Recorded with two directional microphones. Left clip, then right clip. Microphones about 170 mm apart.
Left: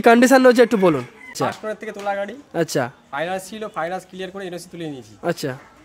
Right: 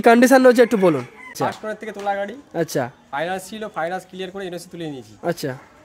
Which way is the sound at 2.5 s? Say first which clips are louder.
Left 2 dB; 20° left (ahead or behind).